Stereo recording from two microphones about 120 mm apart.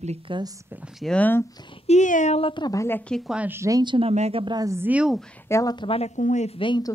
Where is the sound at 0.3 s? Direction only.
45° right (ahead or behind).